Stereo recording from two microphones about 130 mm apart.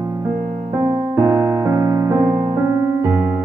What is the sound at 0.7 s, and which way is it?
Music, 30° right (ahead or behind).